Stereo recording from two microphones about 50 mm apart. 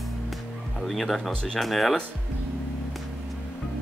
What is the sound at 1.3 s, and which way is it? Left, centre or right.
Speech, centre.